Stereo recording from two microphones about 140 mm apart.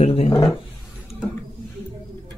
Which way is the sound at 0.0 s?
50° left (ahead or behind).